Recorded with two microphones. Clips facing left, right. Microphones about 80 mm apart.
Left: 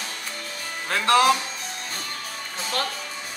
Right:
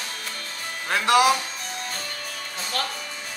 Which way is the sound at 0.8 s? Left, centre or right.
Centre.